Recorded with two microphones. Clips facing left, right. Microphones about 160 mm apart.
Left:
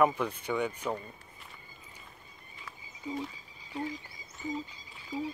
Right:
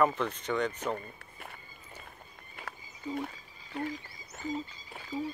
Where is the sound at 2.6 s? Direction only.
60° right (ahead or behind).